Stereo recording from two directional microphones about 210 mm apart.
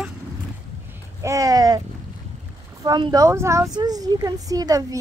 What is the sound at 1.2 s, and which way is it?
Speech, 15° right (ahead or behind).